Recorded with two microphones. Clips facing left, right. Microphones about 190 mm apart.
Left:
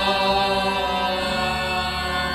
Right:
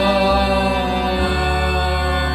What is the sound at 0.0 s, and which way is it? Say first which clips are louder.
Music: right 6 dB; 55° right (ahead or behind).